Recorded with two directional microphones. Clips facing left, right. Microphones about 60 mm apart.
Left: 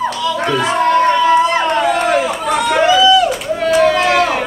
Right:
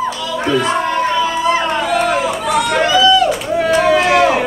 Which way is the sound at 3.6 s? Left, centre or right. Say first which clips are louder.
Left 1 dB; centre.